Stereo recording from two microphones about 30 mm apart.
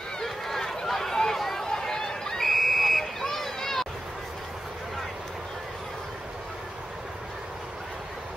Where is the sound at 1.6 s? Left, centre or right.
Left.